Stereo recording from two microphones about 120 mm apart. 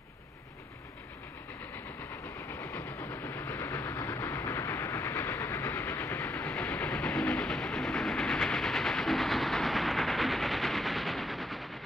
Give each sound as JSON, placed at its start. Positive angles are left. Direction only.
{"t": 2.6, "sound": "train", "side_deg": 25}